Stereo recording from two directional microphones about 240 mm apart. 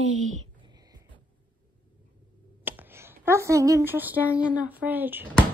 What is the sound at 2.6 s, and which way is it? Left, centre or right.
A woman's voice, centre.